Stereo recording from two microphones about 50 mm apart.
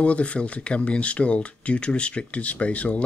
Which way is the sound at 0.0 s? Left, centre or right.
Left.